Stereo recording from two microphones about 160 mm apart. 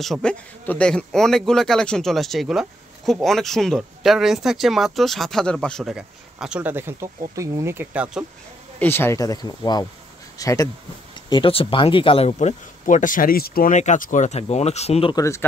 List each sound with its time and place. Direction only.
0.0 s speech: 5° left (ahead or behind)
8.7 s speech: 15° left (ahead or behind)
11.2 s speech: 30° left (ahead or behind)
15.1 s speech: 20° left (ahead or behind)